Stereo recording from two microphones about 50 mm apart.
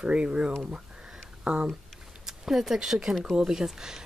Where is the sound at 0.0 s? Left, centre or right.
Right.